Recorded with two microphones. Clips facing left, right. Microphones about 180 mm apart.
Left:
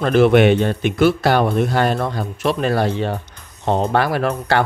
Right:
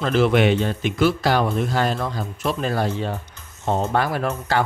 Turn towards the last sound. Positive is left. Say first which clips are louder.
# left 4 dB
turn(degrees=70)  # may be behind; listen again after turning